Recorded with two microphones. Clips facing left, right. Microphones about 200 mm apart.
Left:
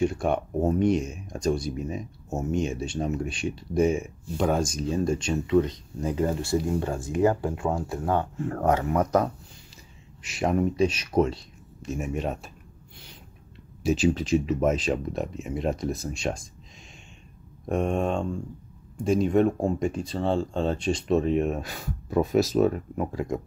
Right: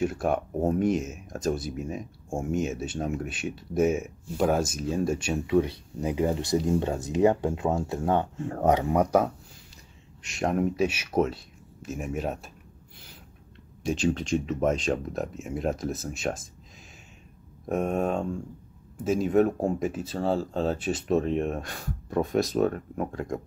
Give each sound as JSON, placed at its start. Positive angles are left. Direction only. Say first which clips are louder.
{"t": 0.0, "sound": "speech", "louder": "left 1 dB", "side_deg": -5}
{"t": 10.2, "sound": "speech", "louder": "left 2 dB", "side_deg": 0}
{"t": 13.8, "sound": "speech", "louder": "left 3 dB", "side_deg": 5}
{"t": 17.6, "sound": "speech", "louder": "left 1 dB", "side_deg": -5}